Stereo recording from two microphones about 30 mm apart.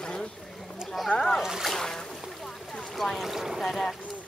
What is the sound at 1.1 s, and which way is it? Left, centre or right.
Splash, centre.